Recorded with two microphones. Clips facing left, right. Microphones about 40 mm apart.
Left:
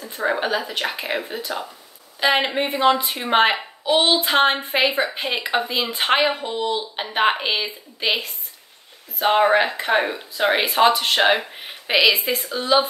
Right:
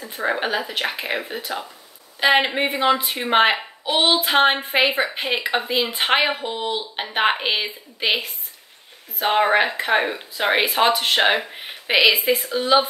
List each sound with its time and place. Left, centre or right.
0.1 s speech: centre
3.8 s a sound: centre
4.6 s speech: centre